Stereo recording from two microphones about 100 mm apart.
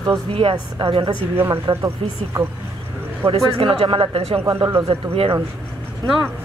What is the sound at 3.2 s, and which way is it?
Speech, 65° right (ahead or behind).